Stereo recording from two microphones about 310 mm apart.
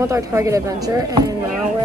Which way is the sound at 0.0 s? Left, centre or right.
Centre.